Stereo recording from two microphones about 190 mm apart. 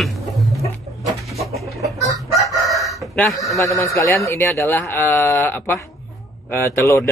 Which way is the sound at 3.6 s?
15° left (ahead or behind).